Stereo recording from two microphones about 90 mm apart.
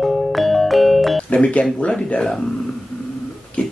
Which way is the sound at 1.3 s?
15° left (ahead or behind).